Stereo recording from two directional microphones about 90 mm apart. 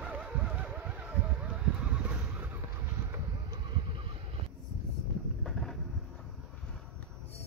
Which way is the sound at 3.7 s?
75° right (ahead or behind).